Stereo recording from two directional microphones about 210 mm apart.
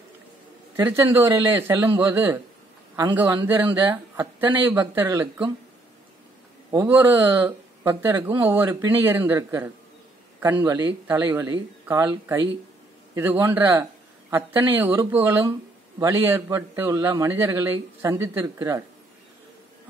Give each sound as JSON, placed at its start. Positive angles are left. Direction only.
{"t": 0.7, "sound": "a man's voice", "side_deg": -10}
{"t": 3.9, "sound": "a man's voice", "side_deg": -10}
{"t": 6.7, "sound": "a man's voice", "side_deg": -10}